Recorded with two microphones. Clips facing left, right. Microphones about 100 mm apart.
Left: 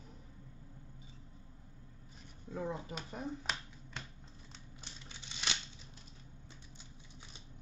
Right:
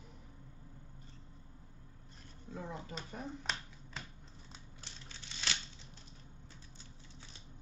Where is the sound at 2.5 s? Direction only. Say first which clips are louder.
Left 5 dB; 15° left (ahead or behind).